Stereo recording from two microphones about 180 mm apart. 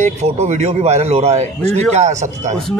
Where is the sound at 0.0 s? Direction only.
40° right (ahead or behind).